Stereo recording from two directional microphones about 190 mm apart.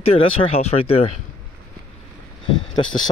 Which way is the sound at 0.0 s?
30° left (ahead or behind).